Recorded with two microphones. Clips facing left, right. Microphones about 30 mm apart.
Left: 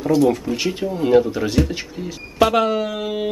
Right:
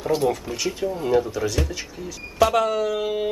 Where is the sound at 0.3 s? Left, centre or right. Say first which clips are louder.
Left 5 dB; centre.